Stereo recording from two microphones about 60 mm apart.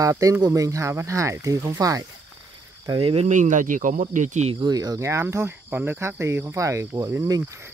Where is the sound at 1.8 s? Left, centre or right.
Right.